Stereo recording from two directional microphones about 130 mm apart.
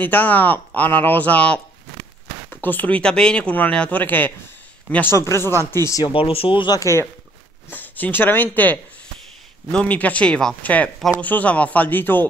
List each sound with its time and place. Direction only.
0.0 s speech: 15° left (ahead or behind)
6.1 s speech: 45° left (ahead or behind)
6.8 s speech: 20° left (ahead or behind)